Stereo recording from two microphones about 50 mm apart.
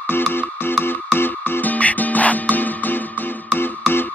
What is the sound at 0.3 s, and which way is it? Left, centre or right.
Music, left.